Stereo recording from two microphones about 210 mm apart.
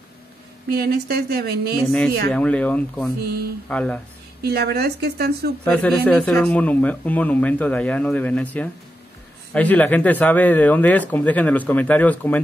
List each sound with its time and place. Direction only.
0.7 s a woman's voice: 45° right (ahead or behind)
2.3 s speech: 5° left (ahead or behind)
4.4 s a woman's voice: 50° right (ahead or behind)
5.7 s speech: 5° left (ahead or behind)